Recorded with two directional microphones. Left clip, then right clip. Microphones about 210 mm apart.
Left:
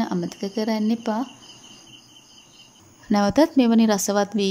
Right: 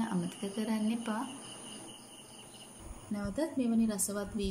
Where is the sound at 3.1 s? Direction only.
40° left (ahead or behind).